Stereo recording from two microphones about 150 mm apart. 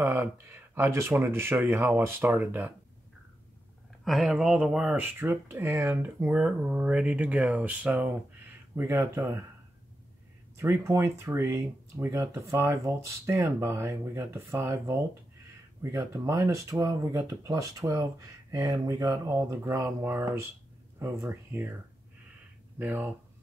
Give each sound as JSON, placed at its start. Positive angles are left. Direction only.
{"t": 0.0, "sound": "speech", "side_deg": -15}
{"t": 4.0, "sound": "speech", "side_deg": 0}
{"t": 10.6, "sound": "speech", "side_deg": -20}
{"t": 22.8, "sound": "speech", "side_deg": -15}